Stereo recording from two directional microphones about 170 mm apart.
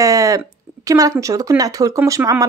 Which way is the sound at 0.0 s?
20° right (ahead or behind).